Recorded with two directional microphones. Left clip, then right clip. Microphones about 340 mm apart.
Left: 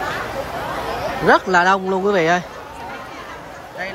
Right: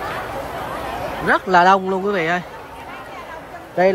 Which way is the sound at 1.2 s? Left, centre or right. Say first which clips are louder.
Even; centre.